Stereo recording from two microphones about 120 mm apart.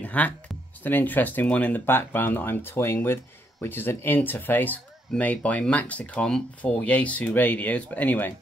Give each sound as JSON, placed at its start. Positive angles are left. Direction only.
{"t": 0.0, "sound": "music", "side_deg": 15}
{"t": 0.8, "sound": "speech", "side_deg": 15}